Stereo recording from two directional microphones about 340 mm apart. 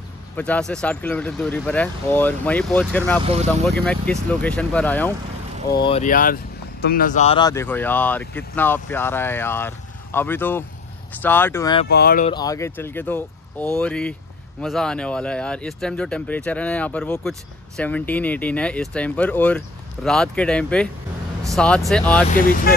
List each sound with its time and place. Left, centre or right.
0.4 s speech: centre
3.3 s speech: centre
3.6 s speech: centre
5.8 s speech: centre
11.9 s speech: left
12.3 s speech: centre
22.3 s speech: left